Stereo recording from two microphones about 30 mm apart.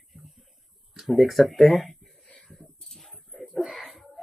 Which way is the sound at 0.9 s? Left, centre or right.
Centre.